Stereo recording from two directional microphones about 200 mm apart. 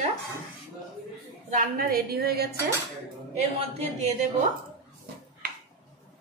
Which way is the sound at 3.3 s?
30° right (ahead or behind).